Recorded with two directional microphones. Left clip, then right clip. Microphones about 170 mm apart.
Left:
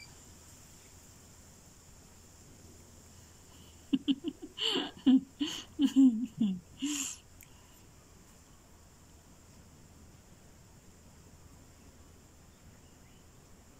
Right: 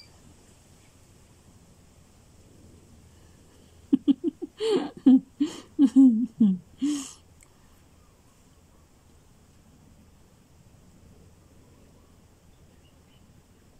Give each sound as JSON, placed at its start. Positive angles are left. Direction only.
{"t": 3.9, "sound": "laughter", "side_deg": -40}